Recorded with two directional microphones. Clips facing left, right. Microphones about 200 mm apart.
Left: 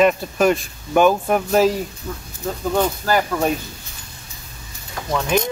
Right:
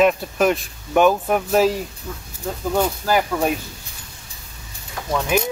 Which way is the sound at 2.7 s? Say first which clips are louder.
Even; 5° right (ahead or behind).